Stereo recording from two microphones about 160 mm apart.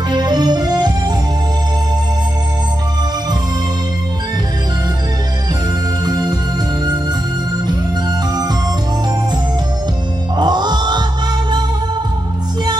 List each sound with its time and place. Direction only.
0.1 s music: 25° right (ahead or behind)
6.0 s music: 25° right (ahead or behind)
10.3 s music: 25° right (ahead or behind)